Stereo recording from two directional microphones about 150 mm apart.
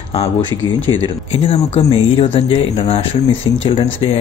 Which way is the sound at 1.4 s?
40° left (ahead or behind).